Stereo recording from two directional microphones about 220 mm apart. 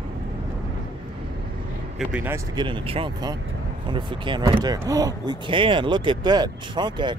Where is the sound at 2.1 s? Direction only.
10° right (ahead or behind).